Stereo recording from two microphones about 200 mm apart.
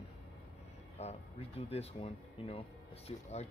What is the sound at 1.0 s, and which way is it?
Music, 30° left (ahead or behind).